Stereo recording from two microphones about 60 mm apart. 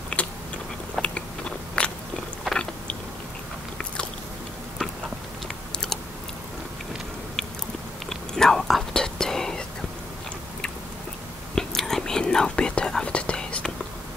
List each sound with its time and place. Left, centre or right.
0.2 s biting: left
1.0 s biting: centre
1.8 s biting: left
5.7 s typing: centre
8.1 s whispering: centre
11.5 s whispering: centre